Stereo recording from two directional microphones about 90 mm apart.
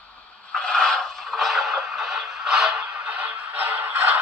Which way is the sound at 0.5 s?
10° left (ahead or behind).